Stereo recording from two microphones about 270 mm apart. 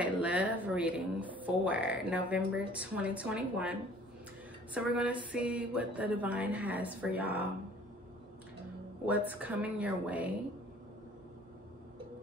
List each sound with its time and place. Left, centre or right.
0.2 s speech: centre
4.7 s speech: centre
9.0 s speech: centre